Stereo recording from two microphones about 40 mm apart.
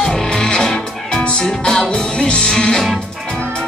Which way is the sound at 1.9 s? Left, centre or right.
Left.